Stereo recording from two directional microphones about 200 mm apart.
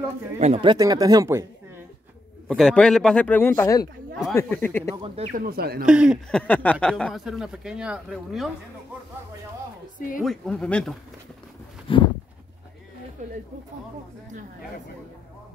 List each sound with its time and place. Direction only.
0.4 s speech: 30° right (ahead or behind)
2.4 s speech: centre (ahead or behind)
4.9 s speech: 25° right (ahead or behind)
5.3 s speech: 45° right (ahead or behind)
5.9 s speech: 5° right (ahead or behind)
6.4 s speech: 5° left (ahead or behind)
9.9 s a woman's voice: 40° left (ahead or behind)
10.2 s speech: 5° left (ahead or behind)
11.9 s a sound: 25° left (ahead or behind)
13.2 s speech: 35° right (ahead or behind)